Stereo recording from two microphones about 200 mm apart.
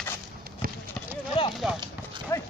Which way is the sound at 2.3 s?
15° left (ahead or behind).